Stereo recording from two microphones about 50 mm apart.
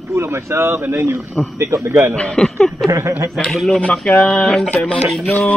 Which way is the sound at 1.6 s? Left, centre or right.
Right.